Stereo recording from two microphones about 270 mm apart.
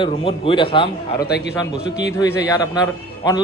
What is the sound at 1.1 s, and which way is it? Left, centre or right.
Speech, left.